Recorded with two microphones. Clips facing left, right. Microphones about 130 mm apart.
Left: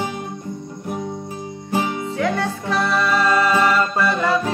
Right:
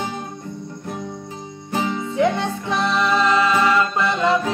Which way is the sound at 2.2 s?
20° right (ahead or behind).